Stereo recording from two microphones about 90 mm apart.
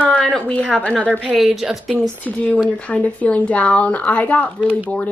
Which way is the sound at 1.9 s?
15° left (ahead or behind).